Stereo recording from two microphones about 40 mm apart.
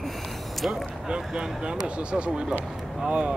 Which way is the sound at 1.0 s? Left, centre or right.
Centre.